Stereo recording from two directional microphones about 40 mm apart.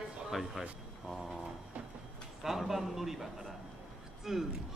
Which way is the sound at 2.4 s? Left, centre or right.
Centre.